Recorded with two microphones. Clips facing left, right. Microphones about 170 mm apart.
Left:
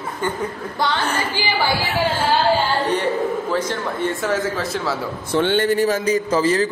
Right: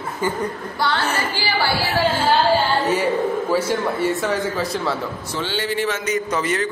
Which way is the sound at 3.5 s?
10° right (ahead or behind).